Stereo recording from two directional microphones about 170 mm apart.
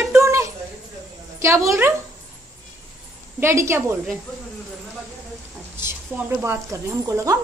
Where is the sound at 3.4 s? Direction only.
15° right (ahead or behind).